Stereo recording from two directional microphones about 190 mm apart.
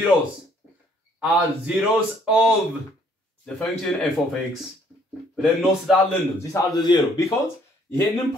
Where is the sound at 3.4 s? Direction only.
5° left (ahead or behind).